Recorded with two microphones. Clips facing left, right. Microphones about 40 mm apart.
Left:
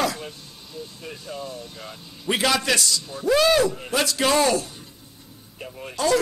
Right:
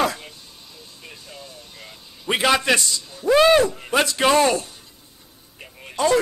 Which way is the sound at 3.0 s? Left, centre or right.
Centre.